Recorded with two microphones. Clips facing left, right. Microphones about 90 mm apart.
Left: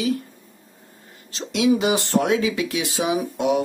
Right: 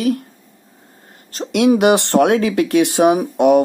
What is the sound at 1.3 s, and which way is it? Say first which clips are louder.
Speech: right 5 dB; 50° right (ahead or behind).